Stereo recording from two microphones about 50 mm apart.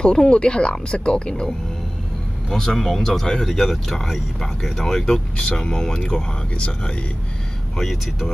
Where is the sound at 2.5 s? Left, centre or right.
Centre.